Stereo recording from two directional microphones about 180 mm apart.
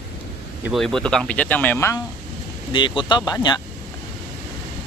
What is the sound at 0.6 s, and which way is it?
Speech, centre (ahead or behind).